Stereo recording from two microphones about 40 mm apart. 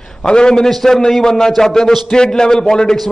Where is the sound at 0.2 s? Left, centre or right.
Left.